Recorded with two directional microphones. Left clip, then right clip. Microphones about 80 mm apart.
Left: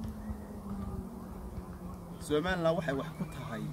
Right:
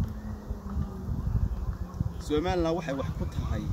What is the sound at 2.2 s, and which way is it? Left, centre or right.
Speech, left.